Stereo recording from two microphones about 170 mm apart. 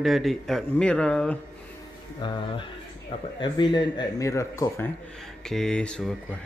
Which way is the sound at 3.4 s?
30° left (ahead or behind).